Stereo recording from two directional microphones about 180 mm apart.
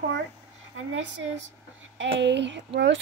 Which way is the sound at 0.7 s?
90° right.